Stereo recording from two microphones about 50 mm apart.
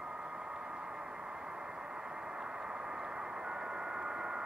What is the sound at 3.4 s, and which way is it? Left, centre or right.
Radio, centre.